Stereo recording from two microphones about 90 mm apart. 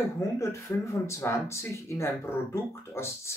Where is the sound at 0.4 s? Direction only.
30° left (ahead or behind).